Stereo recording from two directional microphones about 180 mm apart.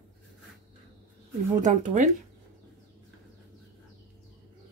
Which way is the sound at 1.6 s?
45° right (ahead or behind).